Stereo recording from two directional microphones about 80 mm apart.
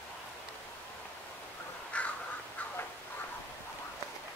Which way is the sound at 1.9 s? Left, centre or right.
Centre.